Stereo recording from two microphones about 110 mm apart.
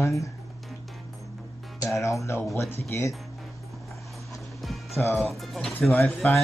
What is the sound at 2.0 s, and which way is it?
Speech, 30° left (ahead or behind).